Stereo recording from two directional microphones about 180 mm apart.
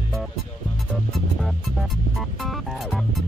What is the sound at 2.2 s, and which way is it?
Music, centre (ahead or behind).